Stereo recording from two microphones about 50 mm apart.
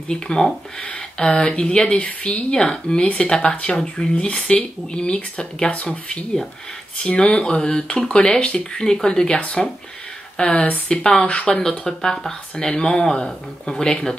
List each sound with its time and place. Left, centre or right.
0.1 s speech: centre
2.5 s speech: centre
8.8 s speech: centre
9.4 s speech: left
11.0 s speech: centre